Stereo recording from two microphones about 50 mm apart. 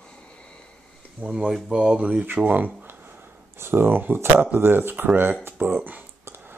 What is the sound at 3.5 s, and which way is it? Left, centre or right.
Speech, right.